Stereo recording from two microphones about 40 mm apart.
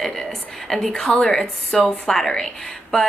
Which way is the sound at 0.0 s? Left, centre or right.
Centre.